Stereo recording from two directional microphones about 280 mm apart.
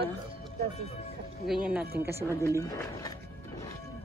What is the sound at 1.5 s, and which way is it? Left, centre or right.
Speech, centre.